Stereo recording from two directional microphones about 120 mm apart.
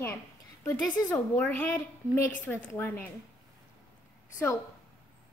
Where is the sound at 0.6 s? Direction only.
15° left (ahead or behind).